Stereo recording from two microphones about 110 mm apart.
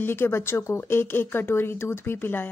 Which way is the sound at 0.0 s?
20° left (ahead or behind).